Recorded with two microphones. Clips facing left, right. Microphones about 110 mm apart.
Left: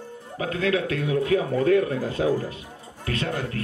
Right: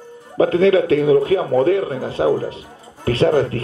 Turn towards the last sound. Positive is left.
turn(degrees=-35)  # may be behind; listen again after turning